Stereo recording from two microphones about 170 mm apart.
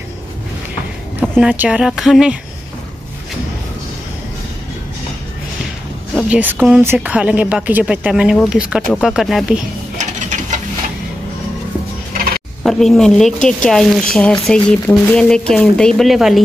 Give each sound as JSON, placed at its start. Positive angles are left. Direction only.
{"t": 1.3, "sound": "speech", "side_deg": -10}
{"t": 6.1, "sound": "a woman's voice", "side_deg": -5}
{"t": 9.9, "sound": "a sound", "side_deg": -45}
{"t": 12.6, "sound": "speech", "side_deg": 0}